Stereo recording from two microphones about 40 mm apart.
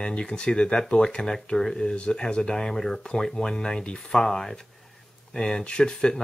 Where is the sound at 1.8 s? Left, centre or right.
Left.